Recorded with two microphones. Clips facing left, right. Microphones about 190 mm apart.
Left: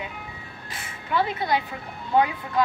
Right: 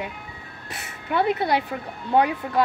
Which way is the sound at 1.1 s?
60° right (ahead or behind).